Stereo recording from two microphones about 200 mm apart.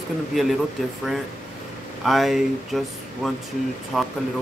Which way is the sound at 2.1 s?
Centre (ahead or behind).